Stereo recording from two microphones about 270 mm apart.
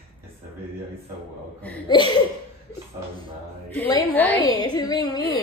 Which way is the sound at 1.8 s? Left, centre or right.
Centre.